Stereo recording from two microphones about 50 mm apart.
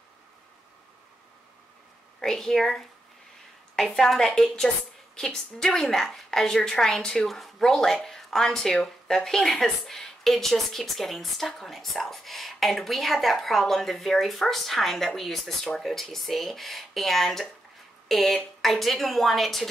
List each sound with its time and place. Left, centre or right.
2.2 s a woman's voice: centre